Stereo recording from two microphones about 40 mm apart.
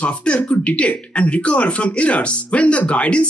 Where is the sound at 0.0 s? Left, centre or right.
Left.